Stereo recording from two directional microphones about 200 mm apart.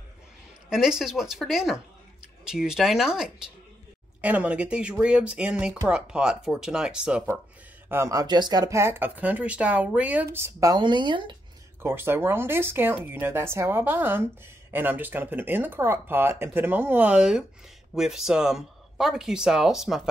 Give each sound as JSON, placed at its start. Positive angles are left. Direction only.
{"t": 0.7, "sound": "speech", "side_deg": 0}
{"t": 7.9, "sound": "speech", "side_deg": -15}
{"t": 11.8, "sound": "speech", "side_deg": -10}